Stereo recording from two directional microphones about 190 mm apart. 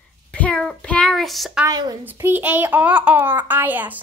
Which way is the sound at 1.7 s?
20° right (ahead or behind).